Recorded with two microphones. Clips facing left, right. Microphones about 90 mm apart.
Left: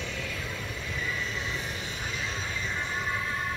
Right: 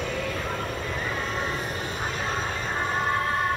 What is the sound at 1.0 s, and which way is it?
Vehicle, 55° right (ahead or behind).